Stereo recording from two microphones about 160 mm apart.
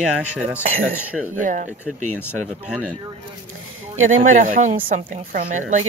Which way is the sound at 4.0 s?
50° right (ahead or behind).